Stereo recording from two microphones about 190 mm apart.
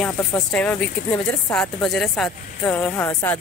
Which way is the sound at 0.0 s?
5° left (ahead or behind).